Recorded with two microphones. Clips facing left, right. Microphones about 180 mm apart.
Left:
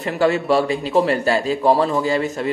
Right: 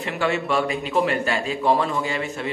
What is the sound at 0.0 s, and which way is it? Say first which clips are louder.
Speech: left 6 dB; 40° left (ahead or behind).